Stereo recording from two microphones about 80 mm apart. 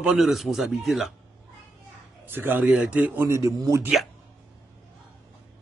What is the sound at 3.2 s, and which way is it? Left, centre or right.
Speech, right.